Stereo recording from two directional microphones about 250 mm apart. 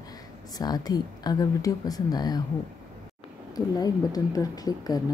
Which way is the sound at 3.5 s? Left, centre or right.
Centre.